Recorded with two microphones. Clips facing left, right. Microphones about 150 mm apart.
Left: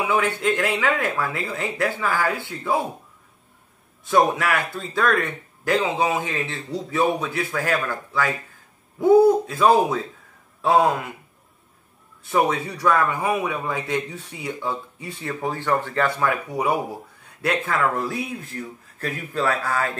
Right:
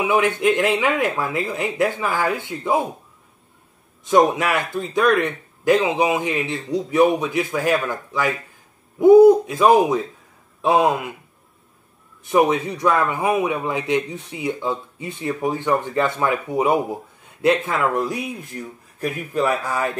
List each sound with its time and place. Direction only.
0.0 s speech: 20° right (ahead or behind)
4.0 s speech: 20° right (ahead or behind)
12.2 s speech: 20° right (ahead or behind)